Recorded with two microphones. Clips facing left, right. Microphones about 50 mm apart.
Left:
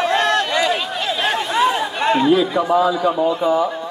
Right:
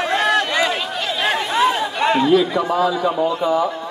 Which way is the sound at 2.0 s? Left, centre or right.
Centre.